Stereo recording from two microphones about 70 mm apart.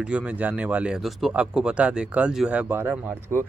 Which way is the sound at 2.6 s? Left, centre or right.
Right.